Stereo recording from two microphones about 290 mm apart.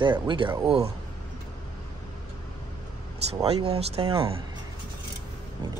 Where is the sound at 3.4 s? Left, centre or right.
Centre.